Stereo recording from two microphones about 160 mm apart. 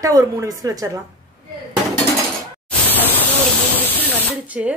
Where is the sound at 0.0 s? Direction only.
20° right (ahead or behind).